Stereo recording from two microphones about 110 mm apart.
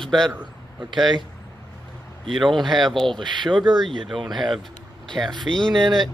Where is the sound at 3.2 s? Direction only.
45° right (ahead or behind).